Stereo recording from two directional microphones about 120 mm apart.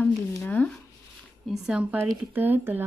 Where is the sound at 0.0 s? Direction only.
15° left (ahead or behind).